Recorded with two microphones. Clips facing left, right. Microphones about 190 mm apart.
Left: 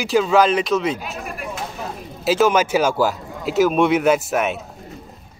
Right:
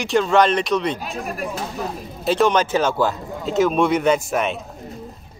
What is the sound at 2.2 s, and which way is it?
Speech, 5° left (ahead or behind).